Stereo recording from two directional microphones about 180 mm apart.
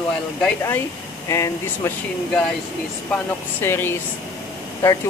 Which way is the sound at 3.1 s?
10° left (ahead or behind).